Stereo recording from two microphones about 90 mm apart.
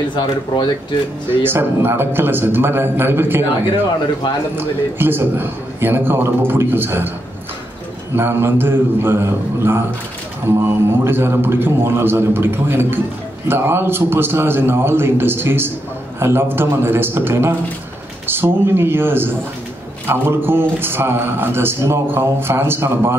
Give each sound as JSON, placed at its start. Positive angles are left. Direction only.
{"t": 0.1, "sound": "speech", "side_deg": 60}
{"t": 1.3, "sound": "a man's voice", "side_deg": -25}
{"t": 8.2, "sound": "a man's voice", "side_deg": -25}